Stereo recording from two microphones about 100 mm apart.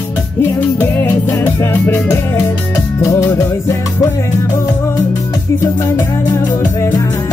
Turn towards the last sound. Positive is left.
turn(degrees=35)  # may be behind; listen again after turning